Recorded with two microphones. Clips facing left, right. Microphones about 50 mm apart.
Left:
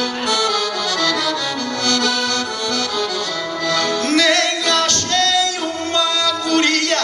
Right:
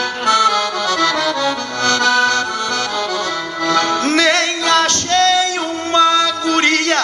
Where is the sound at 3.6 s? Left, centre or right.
Right.